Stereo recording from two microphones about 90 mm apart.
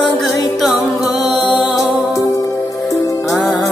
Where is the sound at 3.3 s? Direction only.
40° left (ahead or behind).